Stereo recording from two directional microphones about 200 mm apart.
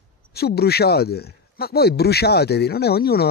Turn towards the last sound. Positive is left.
turn(degrees=50)  # may be behind; listen again after turning